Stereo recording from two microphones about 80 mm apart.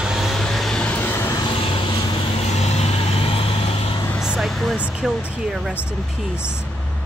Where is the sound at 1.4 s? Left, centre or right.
Left.